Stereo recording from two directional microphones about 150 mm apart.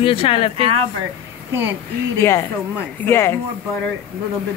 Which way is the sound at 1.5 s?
15° right (ahead or behind).